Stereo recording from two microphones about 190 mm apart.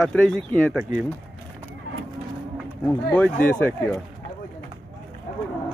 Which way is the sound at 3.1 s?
10° left (ahead or behind).